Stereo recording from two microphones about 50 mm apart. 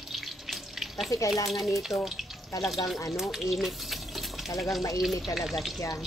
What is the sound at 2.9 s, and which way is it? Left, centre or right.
Speech, left.